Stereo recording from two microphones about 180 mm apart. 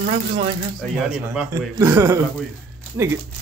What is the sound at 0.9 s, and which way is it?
A man's voice, 5° right (ahead or behind).